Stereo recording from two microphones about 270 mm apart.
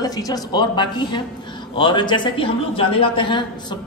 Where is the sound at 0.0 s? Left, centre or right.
Centre.